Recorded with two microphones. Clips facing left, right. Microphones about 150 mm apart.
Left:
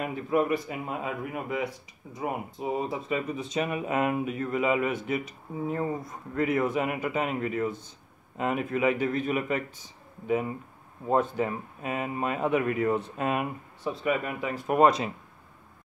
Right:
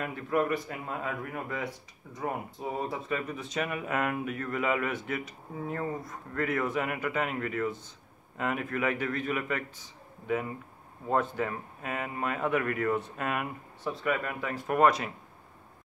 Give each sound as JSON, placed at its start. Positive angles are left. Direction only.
{"t": 0.0, "sound": "speech", "side_deg": 15}